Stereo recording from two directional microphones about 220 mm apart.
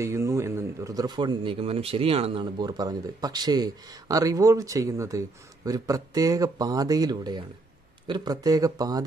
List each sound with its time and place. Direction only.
0.0 s speech: 15° right (ahead or behind)